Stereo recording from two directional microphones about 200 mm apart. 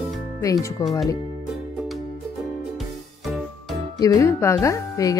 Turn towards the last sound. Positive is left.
turn(degrees=15)  # may be behind; listen again after turning